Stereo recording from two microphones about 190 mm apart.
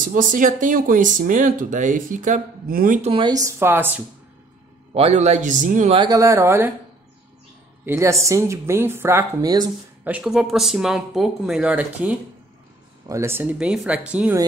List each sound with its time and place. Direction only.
0.0 s speech: 45° right (ahead or behind)
3.1 s speech: 25° right (ahead or behind)
4.9 s speech: 35° right (ahead or behind)
5.9 s speech: 20° right (ahead or behind)
7.8 s speech: 15° right (ahead or behind)
10.0 s speech: 5° right (ahead or behind)